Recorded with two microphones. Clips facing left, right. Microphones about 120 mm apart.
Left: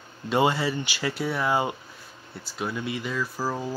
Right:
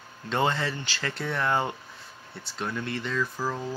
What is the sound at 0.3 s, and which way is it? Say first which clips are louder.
Speech: left 4 dB; 10° left (ahead or behind).